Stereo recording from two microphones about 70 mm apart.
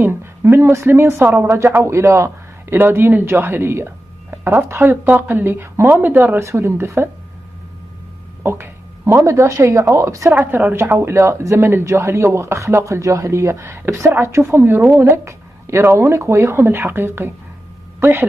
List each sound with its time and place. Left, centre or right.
0.0 s speech: right
6.4 s speech: right
8.4 s speech: right
10.3 s speech: right